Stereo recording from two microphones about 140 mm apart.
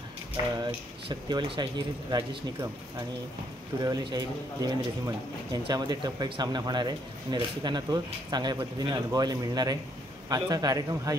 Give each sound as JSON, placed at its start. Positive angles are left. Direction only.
{"t": 1.0, "sound": "speech", "side_deg": -35}
{"t": 3.8, "sound": "speech", "side_deg": -30}